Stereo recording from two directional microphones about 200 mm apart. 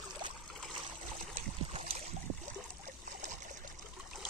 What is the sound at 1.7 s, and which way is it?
Boat, 30° right (ahead or behind).